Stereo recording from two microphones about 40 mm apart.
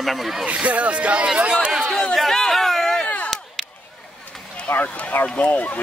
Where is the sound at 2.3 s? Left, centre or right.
Centre.